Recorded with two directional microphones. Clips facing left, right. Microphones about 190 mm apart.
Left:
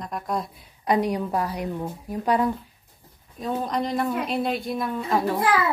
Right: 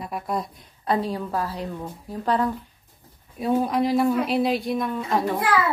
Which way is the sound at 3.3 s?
5° right (ahead or behind).